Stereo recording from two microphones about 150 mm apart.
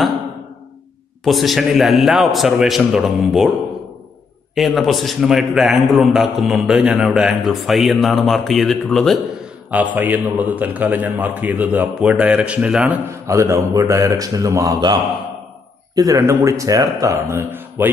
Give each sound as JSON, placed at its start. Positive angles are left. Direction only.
{"t": 1.2, "sound": "a man's voice", "side_deg": 0}
{"t": 4.6, "sound": "a man's voice", "side_deg": 0}
{"t": 9.9, "sound": "a man's voice", "side_deg": -10}
{"t": 13.1, "sound": "speech", "side_deg": -20}